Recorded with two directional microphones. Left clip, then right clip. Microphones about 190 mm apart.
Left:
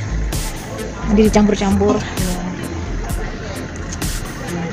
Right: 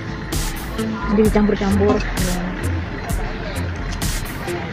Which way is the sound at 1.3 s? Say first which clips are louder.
Left 3 dB; 20° left (ahead or behind).